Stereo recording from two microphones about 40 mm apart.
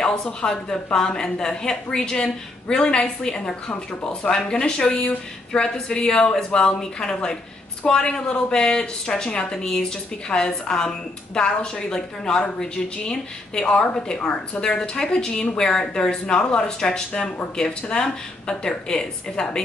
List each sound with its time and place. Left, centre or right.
0.0 s a woman's voice: left